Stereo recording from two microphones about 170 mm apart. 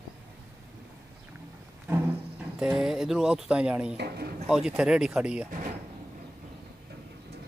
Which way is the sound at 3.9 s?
70° right (ahead or behind).